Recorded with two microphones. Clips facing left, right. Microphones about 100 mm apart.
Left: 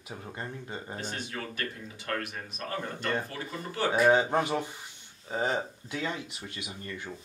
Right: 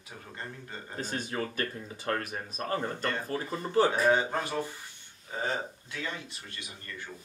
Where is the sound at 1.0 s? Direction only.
40° right (ahead or behind).